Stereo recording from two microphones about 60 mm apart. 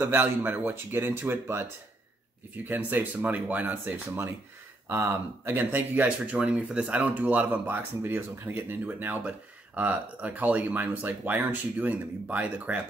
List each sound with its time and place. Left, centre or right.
0.0 s a man's voice: right
2.5 s speech: right
4.8 s speech: right
5.6 s speech: right